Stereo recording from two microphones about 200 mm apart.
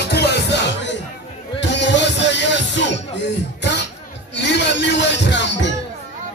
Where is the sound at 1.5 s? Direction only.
60° left (ahead or behind).